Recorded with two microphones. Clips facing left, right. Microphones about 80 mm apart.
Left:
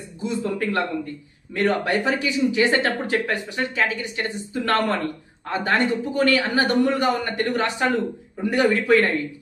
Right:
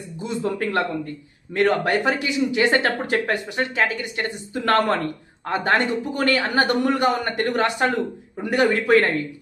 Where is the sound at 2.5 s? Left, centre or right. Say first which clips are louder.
Even; right.